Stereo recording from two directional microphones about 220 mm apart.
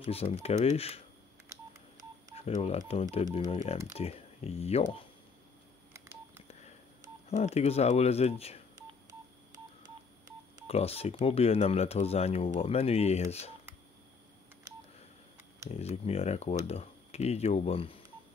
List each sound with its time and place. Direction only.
0.0 s speech: 25° left (ahead or behind)
1.5 s telephone dialing: 15° right (ahead or behind)
2.3 s speech: 30° left (ahead or behind)
5.9 s telephone dialing: 10° right (ahead or behind)
7.2 s speech: 30° left (ahead or behind)
10.7 s speech: 30° left (ahead or behind)
15.7 s speech: 25° left (ahead or behind)